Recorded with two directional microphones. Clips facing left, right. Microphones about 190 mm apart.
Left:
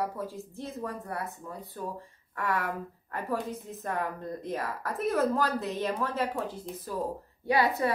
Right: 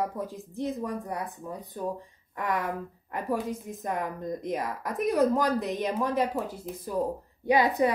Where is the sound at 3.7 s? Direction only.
15° right (ahead or behind).